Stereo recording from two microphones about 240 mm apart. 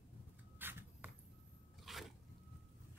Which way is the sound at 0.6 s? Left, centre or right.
Centre.